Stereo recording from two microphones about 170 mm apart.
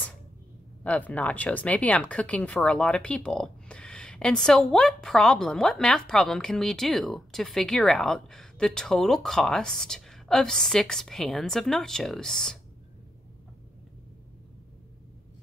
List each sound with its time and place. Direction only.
0.8 s speech: 10° left (ahead or behind)